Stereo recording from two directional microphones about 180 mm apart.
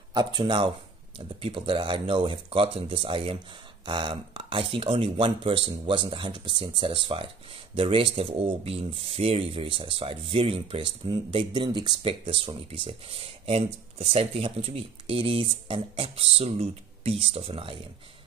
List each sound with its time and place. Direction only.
0.1 s speech: 25° right (ahead or behind)